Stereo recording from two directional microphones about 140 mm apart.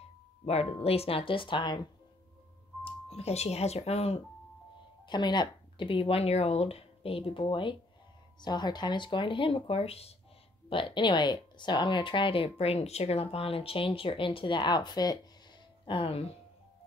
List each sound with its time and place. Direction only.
0.5 s speech: 45° left (ahead or behind)
2.8 s speech: 45° left (ahead or behind)
5.0 s speech: 30° left (ahead or behind)
15.8 s speech: 40° left (ahead or behind)